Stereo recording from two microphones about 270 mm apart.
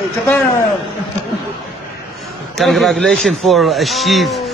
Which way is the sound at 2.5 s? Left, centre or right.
Centre.